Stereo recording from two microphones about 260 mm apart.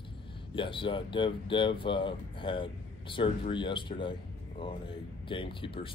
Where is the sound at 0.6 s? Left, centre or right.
Centre.